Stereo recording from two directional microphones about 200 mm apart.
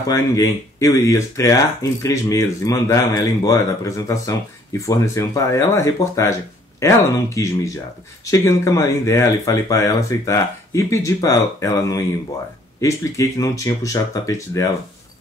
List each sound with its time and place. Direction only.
0.1 s speech: 15° left (ahead or behind)